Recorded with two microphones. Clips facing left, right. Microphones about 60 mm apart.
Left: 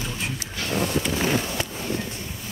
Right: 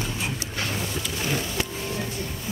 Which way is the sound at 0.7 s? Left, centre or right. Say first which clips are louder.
Left 6 dB; left.